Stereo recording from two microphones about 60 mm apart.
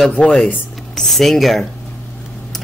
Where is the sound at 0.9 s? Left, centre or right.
Centre.